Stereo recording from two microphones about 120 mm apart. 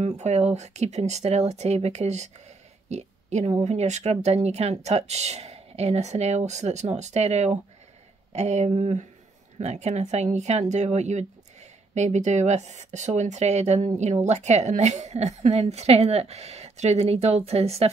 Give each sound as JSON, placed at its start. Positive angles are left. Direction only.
{"t": 0.0, "sound": "a woman's voice", "side_deg": -70}